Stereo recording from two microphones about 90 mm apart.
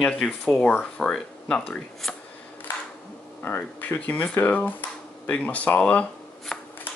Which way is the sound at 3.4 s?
20° left (ahead or behind).